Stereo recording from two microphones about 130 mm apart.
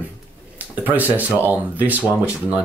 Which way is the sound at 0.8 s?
15° right (ahead or behind).